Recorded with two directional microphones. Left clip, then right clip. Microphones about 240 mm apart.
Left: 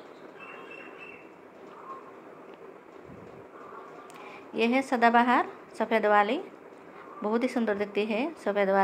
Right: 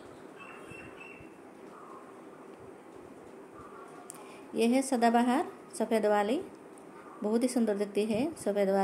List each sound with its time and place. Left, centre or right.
4.6 s a woman's voice: centre